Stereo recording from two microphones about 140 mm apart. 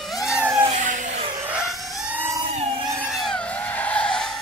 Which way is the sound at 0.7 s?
60° right (ahead or behind).